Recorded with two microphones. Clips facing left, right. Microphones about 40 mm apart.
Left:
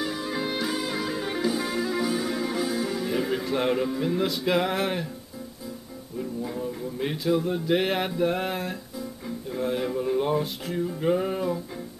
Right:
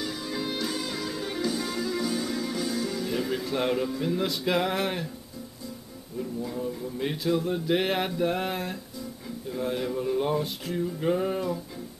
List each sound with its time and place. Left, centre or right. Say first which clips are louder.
0.0 s music: left 3 dB; centre
6.4 s a sound: left 1 dB; centre
10.9 s music: left 2 dB; centre